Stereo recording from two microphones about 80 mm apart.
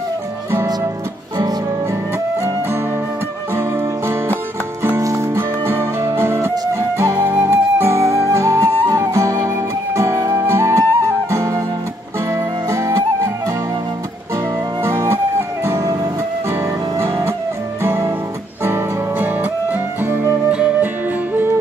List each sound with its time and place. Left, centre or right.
3.5 s music: right
4.9 s music: right
6.7 s flute: right
12.3 s music: right
14.9 s music: right
15.8 s music: right
16.4 s music: right
17.8 s guitar: right
18.6 s music: right